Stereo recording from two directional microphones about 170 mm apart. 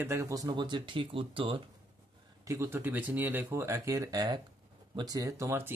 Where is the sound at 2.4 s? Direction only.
15° right (ahead or behind).